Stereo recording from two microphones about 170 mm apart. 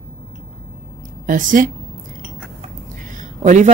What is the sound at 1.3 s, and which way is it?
Speech, 50° right (ahead or behind).